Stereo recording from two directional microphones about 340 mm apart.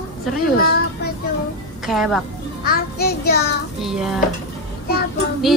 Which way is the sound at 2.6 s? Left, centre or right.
Left.